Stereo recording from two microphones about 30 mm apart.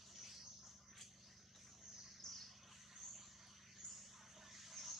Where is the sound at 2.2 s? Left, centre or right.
Left.